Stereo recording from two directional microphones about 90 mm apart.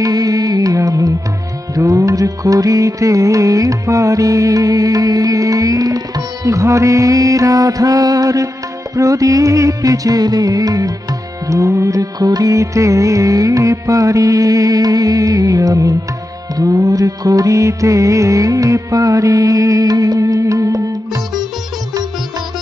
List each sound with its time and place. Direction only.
0.0 s music: 40° right (ahead or behind)